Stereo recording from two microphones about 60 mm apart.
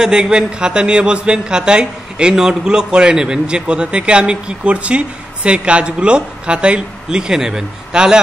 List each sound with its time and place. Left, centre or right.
0.0 s a man's voice: centre